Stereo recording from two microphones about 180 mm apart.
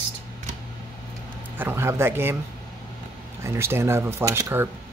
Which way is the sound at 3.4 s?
15° right (ahead or behind).